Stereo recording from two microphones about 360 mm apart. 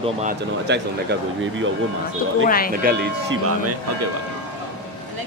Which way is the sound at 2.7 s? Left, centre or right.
Right.